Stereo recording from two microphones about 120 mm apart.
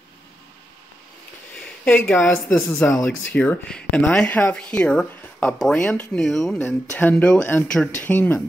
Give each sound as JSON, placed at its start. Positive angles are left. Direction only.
{"t": 1.5, "sound": "a sound", "side_deg": 5}
{"t": 2.1, "sound": "a woman's voice", "side_deg": 20}
{"t": 6.6, "sound": "speech", "side_deg": 15}